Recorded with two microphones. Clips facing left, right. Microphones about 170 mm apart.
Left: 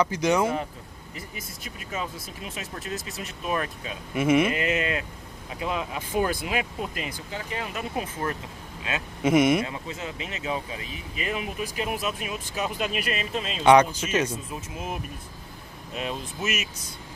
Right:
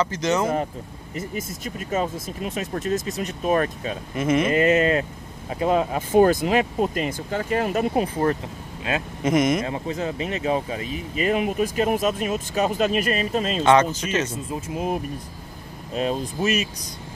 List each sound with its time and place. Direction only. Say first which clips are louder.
0.0 s speech: even; 10° left (ahead or behind)
1.1 s speech: right 11 dB; 45° right (ahead or behind)
4.1 s speech: left 1 dB; 10° left (ahead or behind)
4.5 s speech: right 8 dB; 40° right (ahead or behind)
7.9 s speech: right 8 dB; 35° right (ahead or behind)
9.2 s speech: left 1 dB; 10° left (ahead or behind)
9.7 s speech: right 8 dB; 35° right (ahead or behind)
13.7 s speech: left 2 dB; 10° left (ahead or behind)
14.3 s speech: right 6 dB; 30° right (ahead or behind)